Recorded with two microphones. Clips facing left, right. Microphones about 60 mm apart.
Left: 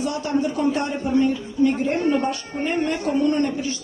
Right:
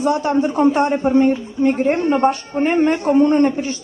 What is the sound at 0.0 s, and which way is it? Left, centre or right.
A man's voice, right.